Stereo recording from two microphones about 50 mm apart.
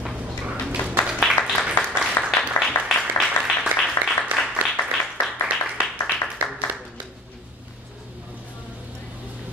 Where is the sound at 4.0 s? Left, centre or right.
Left.